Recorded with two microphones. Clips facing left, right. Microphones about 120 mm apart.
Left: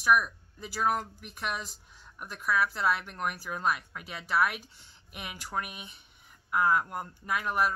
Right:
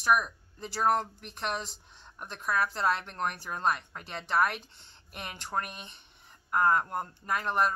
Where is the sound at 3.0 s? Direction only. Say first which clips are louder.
Right 1 dB; 35° right (ahead or behind).